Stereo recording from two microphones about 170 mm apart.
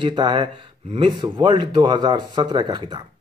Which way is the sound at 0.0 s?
25° right (ahead or behind).